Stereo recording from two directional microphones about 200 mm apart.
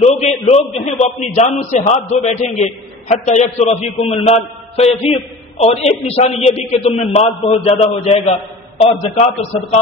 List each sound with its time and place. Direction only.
0.5 s a man's voice: 30° left (ahead or behind)
4.9 s a man's voice: centre (ahead or behind)
5.6 s a man's voice: 30° left (ahead or behind)